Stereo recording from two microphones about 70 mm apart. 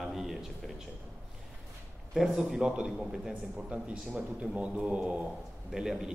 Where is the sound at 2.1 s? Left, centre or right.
Centre.